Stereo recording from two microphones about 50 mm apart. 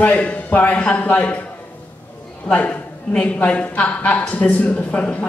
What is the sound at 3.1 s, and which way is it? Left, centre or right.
A man's voice, left.